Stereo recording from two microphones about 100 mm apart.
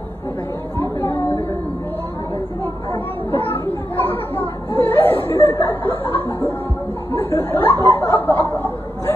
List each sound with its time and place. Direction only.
0.7 s a sound: 20° left (ahead or behind)
3.3 s chatter: 20° left (ahead or behind)
7.1 s snicker: 25° left (ahead or behind)